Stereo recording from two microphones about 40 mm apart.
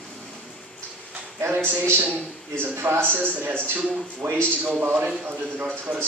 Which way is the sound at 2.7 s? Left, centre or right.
Right.